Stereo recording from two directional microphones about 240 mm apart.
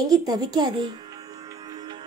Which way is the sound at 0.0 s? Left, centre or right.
Centre.